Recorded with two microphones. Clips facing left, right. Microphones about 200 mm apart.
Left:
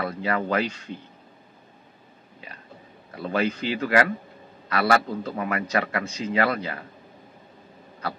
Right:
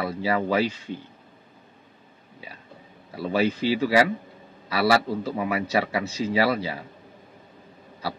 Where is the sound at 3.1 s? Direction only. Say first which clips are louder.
Right 2 dB; 5° right (ahead or behind).